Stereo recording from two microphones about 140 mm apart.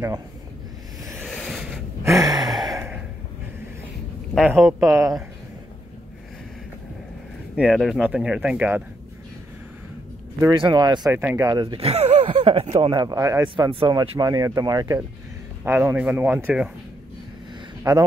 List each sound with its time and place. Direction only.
1.2 s a sound: centre (ahead or behind)
2.0 s a sound: 25° right (ahead or behind)
4.6 s speech: centre (ahead or behind)
4.8 s speech: 20° right (ahead or behind)
7.5 s speech: 5° right (ahead or behind)
10.5 s speech: 35° right (ahead or behind)
11.1 s speech: 15° right (ahead or behind)
11.8 s speech: 45° right (ahead or behind)
12.9 s speech: 25° right (ahead or behind)
13.7 s speech: 40° right (ahead or behind)
14.2 s speech: 25° right (ahead or behind)
15.6 s speech: 15° right (ahead or behind)
17.9 s speech: 30° right (ahead or behind)